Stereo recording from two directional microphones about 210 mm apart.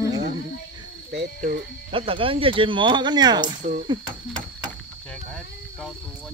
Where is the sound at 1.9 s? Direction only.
25° right (ahead or behind).